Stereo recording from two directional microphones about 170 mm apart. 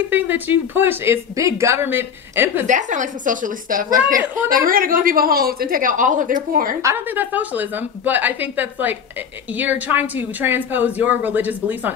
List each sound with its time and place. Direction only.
0.1 s speech: 10° right (ahead or behind)
2.6 s a woman's voice: 45° right (ahead or behind)
6.8 s speech: 15° right (ahead or behind)